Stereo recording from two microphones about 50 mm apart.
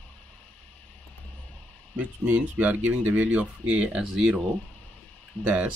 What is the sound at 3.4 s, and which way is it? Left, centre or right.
Speech, right.